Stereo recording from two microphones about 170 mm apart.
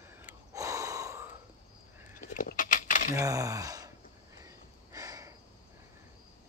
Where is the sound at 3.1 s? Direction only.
20° right (ahead or behind).